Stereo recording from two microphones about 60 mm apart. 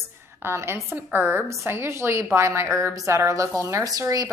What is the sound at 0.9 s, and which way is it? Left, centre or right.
A woman's voice, right.